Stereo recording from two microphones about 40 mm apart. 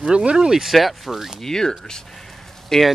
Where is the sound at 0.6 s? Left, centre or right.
Centre.